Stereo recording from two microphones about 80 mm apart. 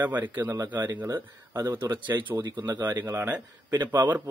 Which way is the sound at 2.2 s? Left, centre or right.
Right.